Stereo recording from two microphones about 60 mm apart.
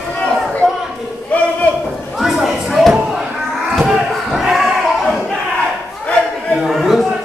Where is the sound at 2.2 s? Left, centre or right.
Centre.